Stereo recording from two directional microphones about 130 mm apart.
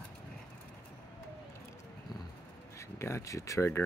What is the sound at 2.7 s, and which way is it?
Speech, 20° left (ahead or behind).